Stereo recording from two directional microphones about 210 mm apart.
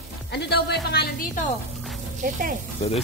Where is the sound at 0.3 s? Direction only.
50° left (ahead or behind).